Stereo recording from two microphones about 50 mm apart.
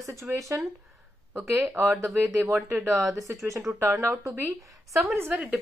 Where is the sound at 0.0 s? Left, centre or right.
Right.